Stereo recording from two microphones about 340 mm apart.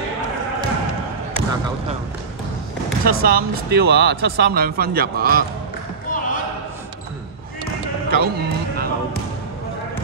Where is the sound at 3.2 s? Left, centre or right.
Right.